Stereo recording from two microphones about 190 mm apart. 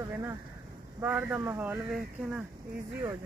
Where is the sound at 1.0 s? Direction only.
10° right (ahead or behind).